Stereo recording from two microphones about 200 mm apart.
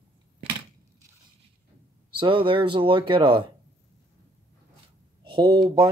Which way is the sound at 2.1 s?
25° right (ahead or behind).